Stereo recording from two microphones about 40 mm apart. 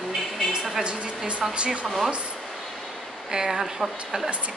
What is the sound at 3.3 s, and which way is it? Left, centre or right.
Speech, centre.